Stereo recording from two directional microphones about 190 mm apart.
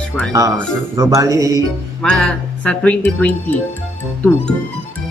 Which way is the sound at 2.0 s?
5° left (ahead or behind).